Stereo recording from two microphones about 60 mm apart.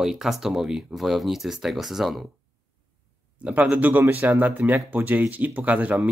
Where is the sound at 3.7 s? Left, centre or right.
Right.